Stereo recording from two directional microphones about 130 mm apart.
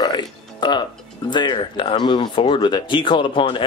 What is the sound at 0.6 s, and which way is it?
Speech, 35° left (ahead or behind).